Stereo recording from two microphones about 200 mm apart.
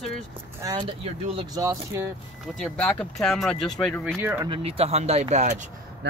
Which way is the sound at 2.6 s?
5° left (ahead or behind).